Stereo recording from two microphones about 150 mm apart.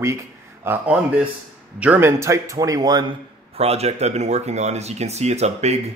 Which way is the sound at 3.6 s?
45° right (ahead or behind).